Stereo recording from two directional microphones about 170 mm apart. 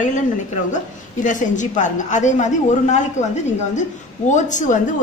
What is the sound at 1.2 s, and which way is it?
A woman's voice, 45° left (ahead or behind).